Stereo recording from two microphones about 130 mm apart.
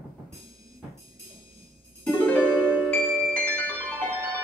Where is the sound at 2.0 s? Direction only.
10° left (ahead or behind).